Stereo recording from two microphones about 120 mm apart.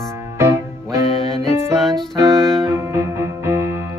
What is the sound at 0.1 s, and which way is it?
Music, 20° right (ahead or behind).